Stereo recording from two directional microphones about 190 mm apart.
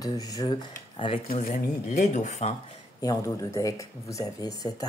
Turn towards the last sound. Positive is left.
turn(degrees=20)  # may be behind; listen again after turning